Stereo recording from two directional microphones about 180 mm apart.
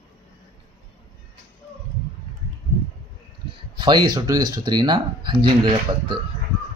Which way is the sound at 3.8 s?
25° right (ahead or behind).